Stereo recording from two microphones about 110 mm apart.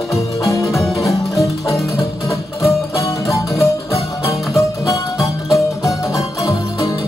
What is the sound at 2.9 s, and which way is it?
Music, 30° left (ahead or behind).